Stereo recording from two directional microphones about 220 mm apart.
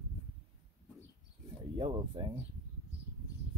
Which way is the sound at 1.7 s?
20° right (ahead or behind).